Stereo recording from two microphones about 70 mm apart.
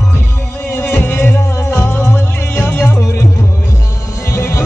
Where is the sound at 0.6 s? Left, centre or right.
Left.